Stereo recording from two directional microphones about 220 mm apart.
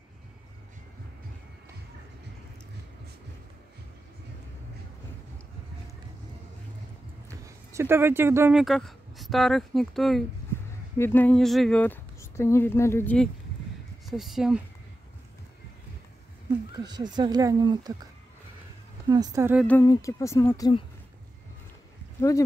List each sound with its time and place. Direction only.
7.2 s speech: 15° right (ahead or behind)
16.8 s speech: 20° right (ahead or behind)
19.0 s a woman's voice: 15° right (ahead or behind)
19.6 s speech: 10° left (ahead or behind)